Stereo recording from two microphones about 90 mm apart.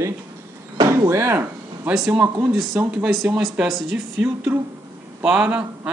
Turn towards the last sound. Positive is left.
turn(degrees=-10)  # may be behind; listen again after turning